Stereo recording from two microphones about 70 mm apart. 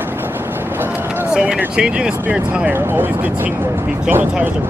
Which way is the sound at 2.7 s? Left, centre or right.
Right.